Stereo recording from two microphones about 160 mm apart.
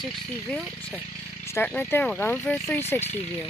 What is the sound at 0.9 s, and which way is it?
Speech, 15° left (ahead or behind).